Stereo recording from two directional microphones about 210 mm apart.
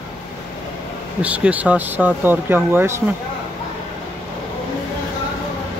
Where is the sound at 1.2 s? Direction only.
5° right (ahead or behind).